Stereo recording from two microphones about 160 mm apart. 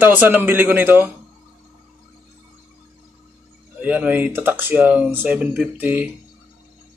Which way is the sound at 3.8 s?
10° right (ahead or behind).